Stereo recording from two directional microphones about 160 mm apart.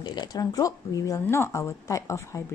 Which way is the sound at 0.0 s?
25° left (ahead or behind).